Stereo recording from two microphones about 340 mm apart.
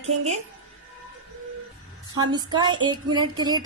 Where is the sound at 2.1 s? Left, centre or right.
Centre.